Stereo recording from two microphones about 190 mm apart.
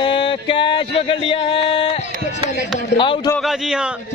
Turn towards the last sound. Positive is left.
turn(degrees=-5)  # may be behind; listen again after turning